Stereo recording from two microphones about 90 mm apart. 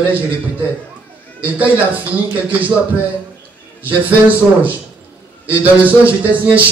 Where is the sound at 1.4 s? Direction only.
15° right (ahead or behind).